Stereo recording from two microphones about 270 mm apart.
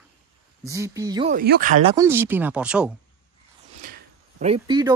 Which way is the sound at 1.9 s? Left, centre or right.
Centre.